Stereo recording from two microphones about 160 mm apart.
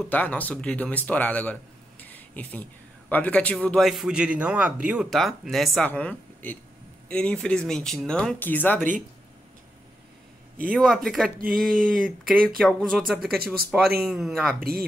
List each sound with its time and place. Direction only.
0.0 s a woman's voice: 10° left (ahead or behind)
10.7 s speech: centre (ahead or behind)
14.6 s speech: 70° right (ahead or behind)